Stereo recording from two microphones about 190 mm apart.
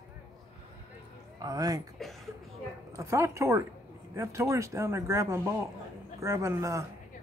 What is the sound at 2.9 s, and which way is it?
Speech, 15° right (ahead or behind).